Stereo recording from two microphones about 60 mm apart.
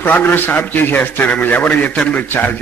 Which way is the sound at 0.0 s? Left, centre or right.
Left.